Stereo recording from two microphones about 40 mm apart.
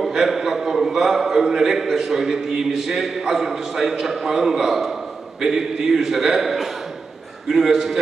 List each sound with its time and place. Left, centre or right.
0.1 s a man's voice: centre